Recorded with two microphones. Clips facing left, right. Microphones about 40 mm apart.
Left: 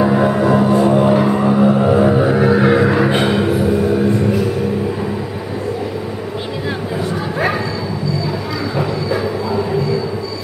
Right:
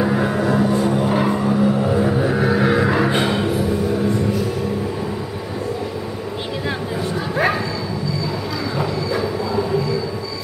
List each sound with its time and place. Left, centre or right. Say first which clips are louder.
0.0 s music: left 5 dB; centre
1.3 s vehicle: left 5 dB; left; by 2.9 s centre
2.9 s music: left 3 dB; centre